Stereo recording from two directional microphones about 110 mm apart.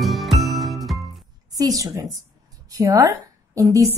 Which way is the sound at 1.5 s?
35° right (ahead or behind).